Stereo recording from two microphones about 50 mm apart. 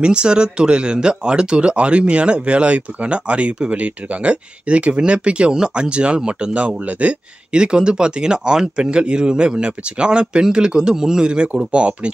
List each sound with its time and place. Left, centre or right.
0.0 s speech: centre